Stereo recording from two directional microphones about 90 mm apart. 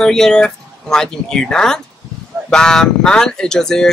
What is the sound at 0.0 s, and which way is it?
Speech, 5° left (ahead or behind).